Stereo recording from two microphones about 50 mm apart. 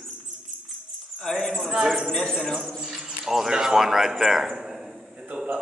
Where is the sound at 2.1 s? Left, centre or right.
Centre.